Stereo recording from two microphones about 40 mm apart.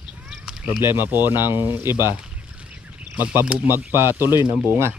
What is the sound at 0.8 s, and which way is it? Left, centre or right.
Speech, right.